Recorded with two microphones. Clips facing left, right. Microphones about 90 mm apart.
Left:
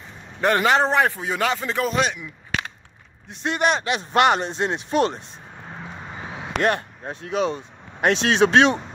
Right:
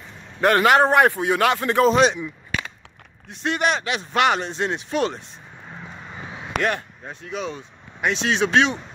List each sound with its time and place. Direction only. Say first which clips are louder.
0.4 s a man's voice: right 2 dB; 5° left (ahead or behind)
0.7 s a man's voice: right 4 dB; 10° right (ahead or behind)
2.0 s speech: right 5 dB; 35° right (ahead or behind)
3.6 s speech: left 3 dB; 30° left (ahead or behind)
5.7 s vehicle: left 2 dB; 40° left (ahead or behind)
7.1 s speech: left 6 dB; 60° left (ahead or behind)